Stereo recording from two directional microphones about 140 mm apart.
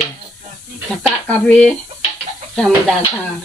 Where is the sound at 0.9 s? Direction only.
10° left (ahead or behind).